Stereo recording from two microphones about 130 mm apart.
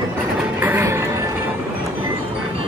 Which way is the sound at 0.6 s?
15° right (ahead or behind).